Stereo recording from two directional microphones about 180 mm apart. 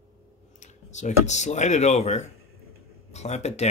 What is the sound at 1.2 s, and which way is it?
Speech, 40° left (ahead or behind).